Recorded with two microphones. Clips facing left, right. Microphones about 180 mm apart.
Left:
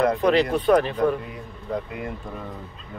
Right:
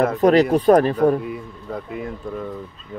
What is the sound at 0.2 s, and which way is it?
Speech, 40° right (ahead or behind).